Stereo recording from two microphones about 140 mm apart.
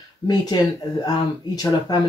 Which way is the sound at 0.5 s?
30° left (ahead or behind).